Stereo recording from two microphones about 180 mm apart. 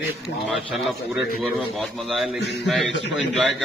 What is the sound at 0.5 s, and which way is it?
A man's voice, 5° right (ahead or behind).